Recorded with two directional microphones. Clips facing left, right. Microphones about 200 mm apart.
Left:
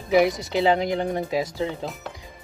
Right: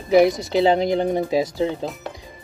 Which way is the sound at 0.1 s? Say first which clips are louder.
Right 4 dB; 30° right (ahead or behind).